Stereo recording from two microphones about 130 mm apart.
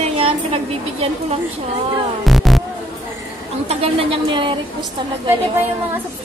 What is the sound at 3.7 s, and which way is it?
Speech, 45° right (ahead or behind).